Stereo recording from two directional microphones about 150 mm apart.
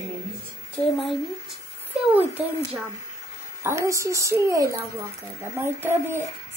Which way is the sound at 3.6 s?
20° right (ahead or behind).